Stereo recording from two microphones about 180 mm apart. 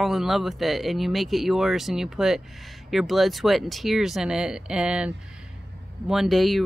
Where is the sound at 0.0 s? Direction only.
Centre (ahead or behind).